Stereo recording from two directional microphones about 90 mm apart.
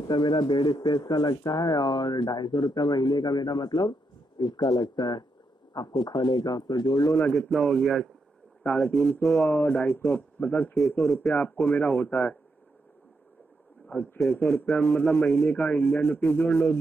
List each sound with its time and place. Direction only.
0.0 s speech: 55° left (ahead or behind)
7.1 s speech: 25° left (ahead or behind)
7.3 s a man's voice: 5° left (ahead or behind)
8.6 s a man's voice: 20° left (ahead or behind)
13.8 s a man's voice: 15° left (ahead or behind)